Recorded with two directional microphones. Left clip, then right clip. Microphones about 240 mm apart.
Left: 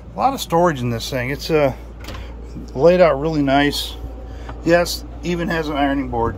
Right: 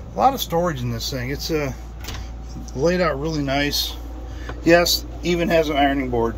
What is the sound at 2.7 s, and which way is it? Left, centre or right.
Speech, centre.